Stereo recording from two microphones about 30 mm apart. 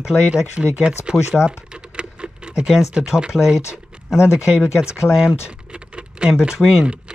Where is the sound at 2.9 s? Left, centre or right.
Right.